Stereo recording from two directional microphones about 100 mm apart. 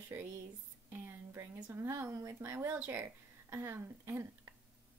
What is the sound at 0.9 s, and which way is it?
Speech, 25° right (ahead or behind).